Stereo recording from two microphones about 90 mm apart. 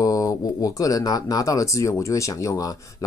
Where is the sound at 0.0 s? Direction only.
40° left (ahead or behind).